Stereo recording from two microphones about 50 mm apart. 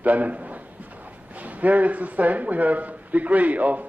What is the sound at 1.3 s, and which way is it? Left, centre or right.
A man's voice, right.